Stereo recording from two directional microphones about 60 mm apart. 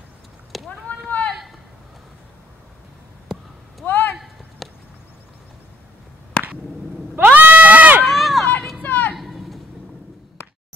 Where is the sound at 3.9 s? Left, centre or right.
Left.